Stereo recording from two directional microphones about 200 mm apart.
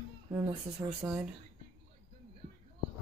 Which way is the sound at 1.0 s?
10° right (ahead or behind).